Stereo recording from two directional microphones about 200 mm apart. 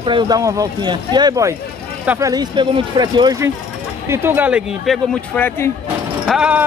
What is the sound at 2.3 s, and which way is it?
A man's voice, 20° right (ahead or behind).